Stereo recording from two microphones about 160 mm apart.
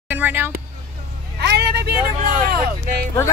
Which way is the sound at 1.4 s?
90° right.